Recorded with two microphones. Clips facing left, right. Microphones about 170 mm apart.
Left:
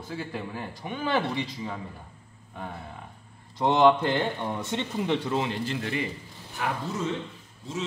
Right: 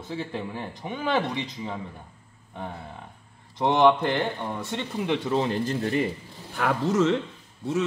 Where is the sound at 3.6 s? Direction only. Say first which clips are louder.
Right 1 dB; 10° right (ahead or behind).